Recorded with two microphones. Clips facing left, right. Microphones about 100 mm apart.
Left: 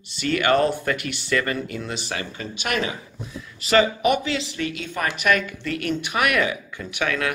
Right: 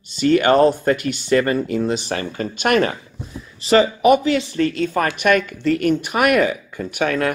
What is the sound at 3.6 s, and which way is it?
Speech, 35° right (ahead or behind).